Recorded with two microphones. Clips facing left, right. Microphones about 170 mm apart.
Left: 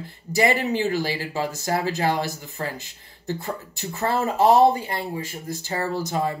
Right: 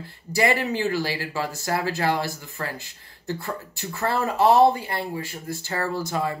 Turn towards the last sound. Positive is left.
turn(degrees=15)  # may be behind; listen again after turning